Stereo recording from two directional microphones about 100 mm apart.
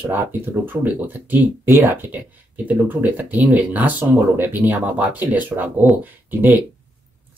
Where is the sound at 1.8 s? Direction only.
20° right (ahead or behind).